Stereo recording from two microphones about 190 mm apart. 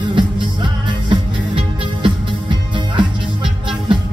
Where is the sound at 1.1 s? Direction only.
25° right (ahead or behind).